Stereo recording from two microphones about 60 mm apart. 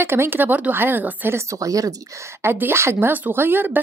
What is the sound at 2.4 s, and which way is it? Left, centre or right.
Speech, right.